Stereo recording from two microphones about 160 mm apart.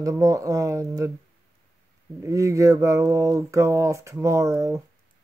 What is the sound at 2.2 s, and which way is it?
Speech, 20° right (ahead or behind).